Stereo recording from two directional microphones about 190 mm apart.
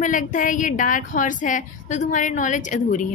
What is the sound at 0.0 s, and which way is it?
A woman's voice, 40° left (ahead or behind).